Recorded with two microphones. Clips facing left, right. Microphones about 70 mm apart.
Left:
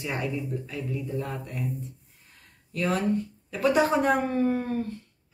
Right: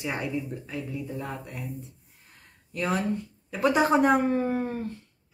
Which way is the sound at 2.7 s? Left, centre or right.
Centre.